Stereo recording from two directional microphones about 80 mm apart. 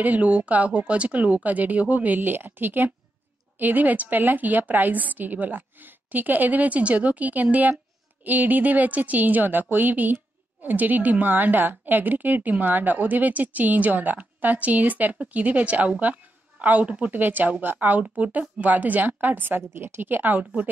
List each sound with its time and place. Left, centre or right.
0.0 s a woman's voice: centre